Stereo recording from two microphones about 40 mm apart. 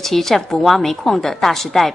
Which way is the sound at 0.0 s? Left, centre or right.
Centre.